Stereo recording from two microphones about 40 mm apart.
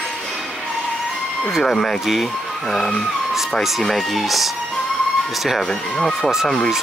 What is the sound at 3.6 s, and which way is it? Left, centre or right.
Speech, centre.